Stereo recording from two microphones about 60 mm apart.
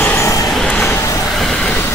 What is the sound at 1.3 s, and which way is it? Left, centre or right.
Vehicle, centre.